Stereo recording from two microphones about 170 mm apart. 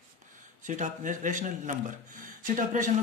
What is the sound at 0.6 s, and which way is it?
Speech, 50° right (ahead or behind).